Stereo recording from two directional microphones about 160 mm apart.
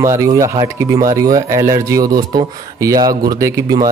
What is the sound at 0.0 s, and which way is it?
Speech, 20° right (ahead or behind).